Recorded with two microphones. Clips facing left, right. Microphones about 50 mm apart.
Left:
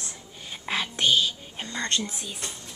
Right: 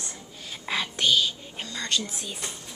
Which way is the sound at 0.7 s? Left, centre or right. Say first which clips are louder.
Even; centre.